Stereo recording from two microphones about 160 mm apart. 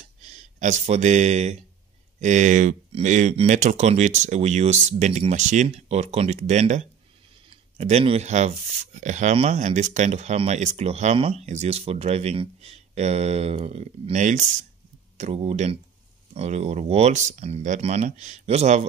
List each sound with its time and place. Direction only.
0.2 s speech: 45° right (ahead or behind)